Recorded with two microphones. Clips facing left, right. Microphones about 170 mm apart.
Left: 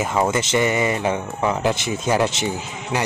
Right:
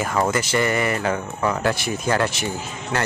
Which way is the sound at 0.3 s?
20° left (ahead or behind).